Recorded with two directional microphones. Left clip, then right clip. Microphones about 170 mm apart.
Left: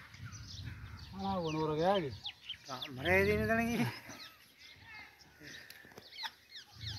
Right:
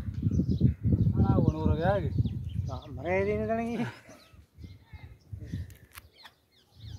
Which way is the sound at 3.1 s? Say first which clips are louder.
Right 2 dB; 20° right (ahead or behind).